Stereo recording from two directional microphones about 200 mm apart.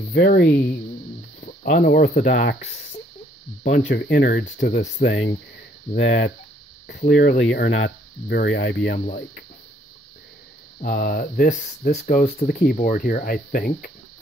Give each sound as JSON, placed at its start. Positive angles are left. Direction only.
{"t": 0.1, "sound": "speech", "side_deg": 50}
{"t": 3.8, "sound": "speech", "side_deg": 55}
{"t": 8.9, "sound": "speech", "side_deg": 45}
{"t": 10.8, "sound": "speech", "side_deg": 45}